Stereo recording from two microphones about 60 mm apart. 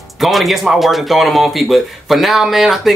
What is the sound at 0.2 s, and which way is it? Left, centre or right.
Speech, centre.